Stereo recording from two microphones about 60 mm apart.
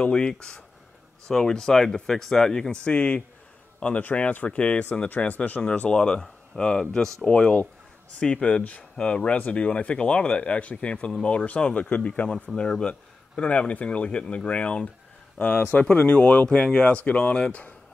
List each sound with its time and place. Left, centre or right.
0.0 s speech: centre
5.8 s speech: centre
7.2 s speech: centre